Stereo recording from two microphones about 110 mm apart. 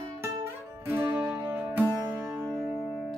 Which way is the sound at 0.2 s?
20° right (ahead or behind).